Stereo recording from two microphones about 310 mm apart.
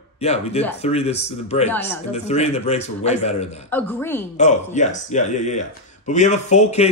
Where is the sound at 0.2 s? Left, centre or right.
Centre.